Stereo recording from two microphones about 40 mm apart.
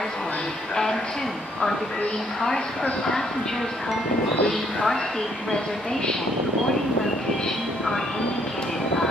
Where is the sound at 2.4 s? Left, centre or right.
Centre.